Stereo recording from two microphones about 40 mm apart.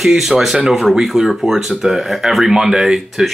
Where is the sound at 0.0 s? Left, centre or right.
Centre.